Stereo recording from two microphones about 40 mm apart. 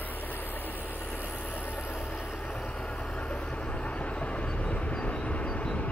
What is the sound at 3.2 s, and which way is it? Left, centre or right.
Vehicle, left.